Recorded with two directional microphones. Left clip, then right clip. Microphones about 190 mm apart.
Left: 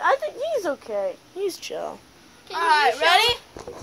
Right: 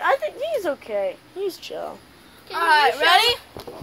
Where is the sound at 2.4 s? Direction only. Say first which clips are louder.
Right 2 dB; 5° left (ahead or behind).